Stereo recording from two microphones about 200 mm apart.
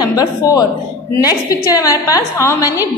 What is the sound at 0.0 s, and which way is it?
A woman's voice, 20° left (ahead or behind).